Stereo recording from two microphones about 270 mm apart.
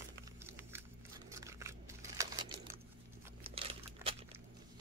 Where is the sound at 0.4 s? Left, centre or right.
Centre.